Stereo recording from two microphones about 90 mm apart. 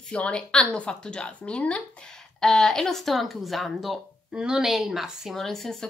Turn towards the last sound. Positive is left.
turn(degrees=5)  # may be behind; listen again after turning